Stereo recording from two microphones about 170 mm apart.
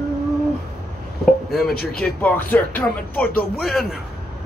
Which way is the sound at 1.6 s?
65° left (ahead or behind).